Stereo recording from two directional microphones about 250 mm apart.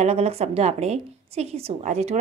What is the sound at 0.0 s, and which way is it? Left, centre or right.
A woman's voice, right.